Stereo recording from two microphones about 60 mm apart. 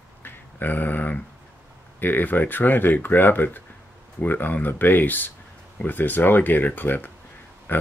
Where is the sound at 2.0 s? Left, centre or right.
Left.